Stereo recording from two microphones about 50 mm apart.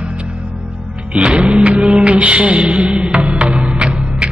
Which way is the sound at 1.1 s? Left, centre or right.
Right.